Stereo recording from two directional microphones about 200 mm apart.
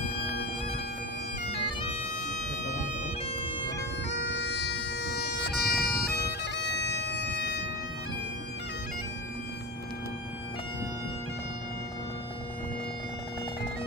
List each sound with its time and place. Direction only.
1.5 s bagpipes: 30° left (ahead or behind)
4.1 s bagpipes: 65° left (ahead or behind)